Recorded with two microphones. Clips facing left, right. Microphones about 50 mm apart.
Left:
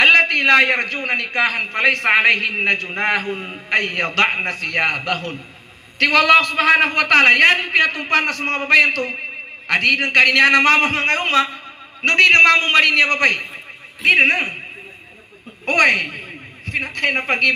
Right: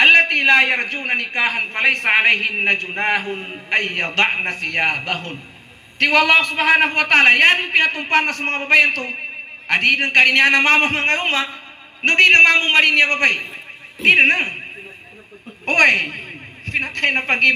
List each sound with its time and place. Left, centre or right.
0.0 s a sound: right
1.0 s a man's voice: right
15.6 s a man's voice: right